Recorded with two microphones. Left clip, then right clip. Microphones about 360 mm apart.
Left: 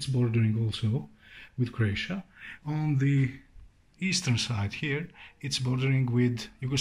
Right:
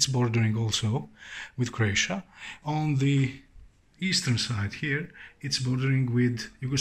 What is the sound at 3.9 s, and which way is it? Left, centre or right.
Speech, centre.